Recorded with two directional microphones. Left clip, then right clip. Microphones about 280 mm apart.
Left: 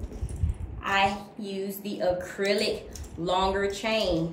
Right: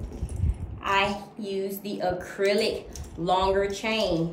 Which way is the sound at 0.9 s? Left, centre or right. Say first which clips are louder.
Even; centre.